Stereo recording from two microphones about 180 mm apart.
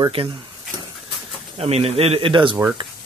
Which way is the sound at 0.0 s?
30° right (ahead or behind).